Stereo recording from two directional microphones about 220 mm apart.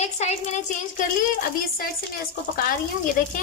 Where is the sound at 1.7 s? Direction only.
40° left (ahead or behind).